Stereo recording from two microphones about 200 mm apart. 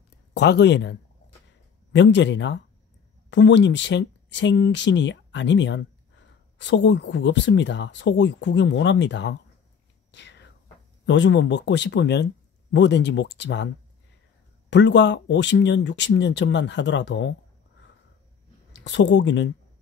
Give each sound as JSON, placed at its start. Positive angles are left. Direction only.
{"t": 0.3, "sound": "speech", "side_deg": 55}
{"t": 10.1, "sound": "whispering", "side_deg": 60}
{"t": 11.1, "sound": "speech", "side_deg": 65}
{"t": 14.7, "sound": "speech", "side_deg": 60}
{"t": 18.7, "sound": "speech", "side_deg": 60}